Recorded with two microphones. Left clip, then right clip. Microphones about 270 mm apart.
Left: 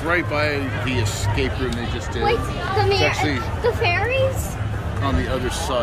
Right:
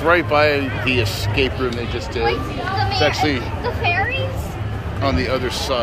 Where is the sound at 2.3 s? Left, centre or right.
Left.